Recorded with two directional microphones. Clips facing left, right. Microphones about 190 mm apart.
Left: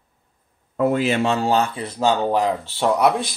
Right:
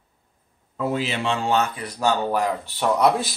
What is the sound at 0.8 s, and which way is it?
Speech, 55° left (ahead or behind).